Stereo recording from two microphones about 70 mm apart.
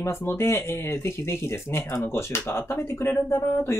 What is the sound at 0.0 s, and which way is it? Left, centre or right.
Speech, left.